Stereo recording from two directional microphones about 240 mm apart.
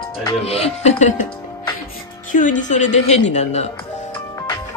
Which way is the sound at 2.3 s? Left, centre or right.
Left.